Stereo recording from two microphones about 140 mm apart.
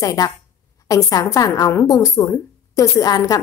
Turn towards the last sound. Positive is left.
turn(degrees=25)  # may be behind; listen again after turning